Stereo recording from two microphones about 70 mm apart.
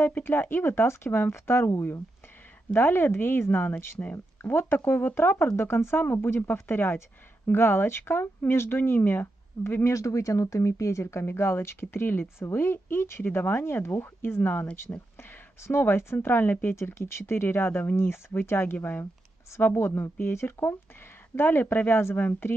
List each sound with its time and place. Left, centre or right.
0.0 s speech: left
9.8 s speech: left